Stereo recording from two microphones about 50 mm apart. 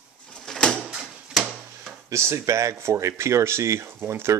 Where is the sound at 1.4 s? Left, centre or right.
Centre.